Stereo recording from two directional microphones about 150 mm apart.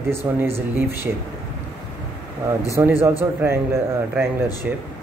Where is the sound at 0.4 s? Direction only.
15° right (ahead or behind).